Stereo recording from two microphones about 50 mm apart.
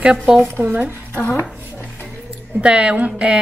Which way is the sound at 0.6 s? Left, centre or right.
Right.